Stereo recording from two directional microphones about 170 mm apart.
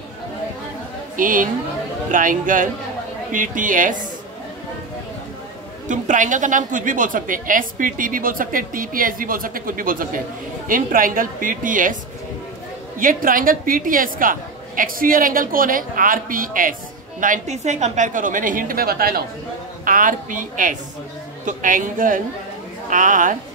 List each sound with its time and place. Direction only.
1.1 s a woman's voice: 50° right (ahead or behind)
5.9 s a woman's voice: 50° right (ahead or behind)
13.0 s a woman's voice: 55° right (ahead or behind)
19.8 s a woman's voice: 50° right (ahead or behind)